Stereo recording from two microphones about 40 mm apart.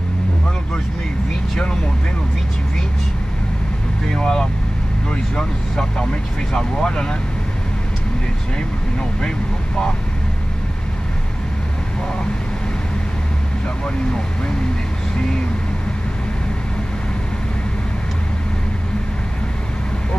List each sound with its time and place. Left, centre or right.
1.5 s vehicle: centre
4.1 s vehicle: centre
5.1 s speech: centre